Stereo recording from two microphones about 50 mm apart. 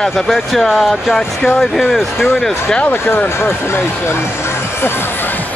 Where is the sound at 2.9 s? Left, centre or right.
Left.